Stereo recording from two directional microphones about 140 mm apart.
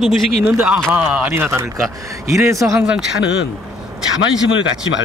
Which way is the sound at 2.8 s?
5° right (ahead or behind).